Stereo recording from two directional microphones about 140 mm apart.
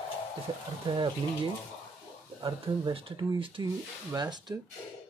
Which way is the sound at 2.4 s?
35° right (ahead or behind).